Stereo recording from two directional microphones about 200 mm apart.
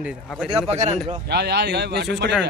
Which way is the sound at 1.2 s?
55° right (ahead or behind).